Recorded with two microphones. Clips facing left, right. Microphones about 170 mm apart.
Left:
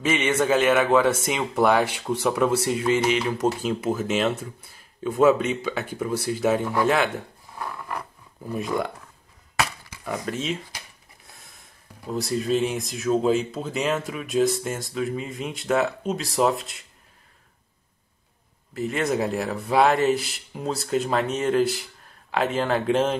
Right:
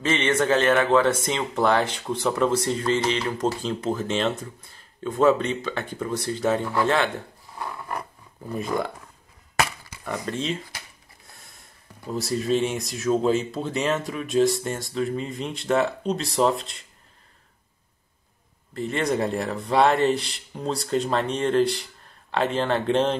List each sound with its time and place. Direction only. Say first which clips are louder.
0.0 s speech: even; 5° left (ahead or behind)
8.5 s speech: even; centre (ahead or behind)
10.0 s speech: even; 5° left (ahead or behind)
18.7 s speech: even; 5° left (ahead or behind)